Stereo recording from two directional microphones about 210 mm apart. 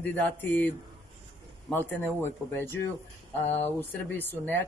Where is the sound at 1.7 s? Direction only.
10° left (ahead or behind).